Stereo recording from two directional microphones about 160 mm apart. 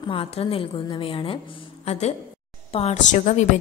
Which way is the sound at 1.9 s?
45° left (ahead or behind).